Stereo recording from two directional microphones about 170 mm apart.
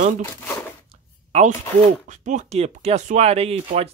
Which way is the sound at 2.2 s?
40° right (ahead or behind).